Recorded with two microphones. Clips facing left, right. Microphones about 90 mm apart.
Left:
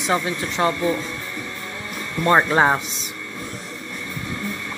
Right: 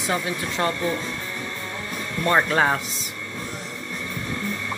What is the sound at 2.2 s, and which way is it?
Speech, 25° left (ahead or behind).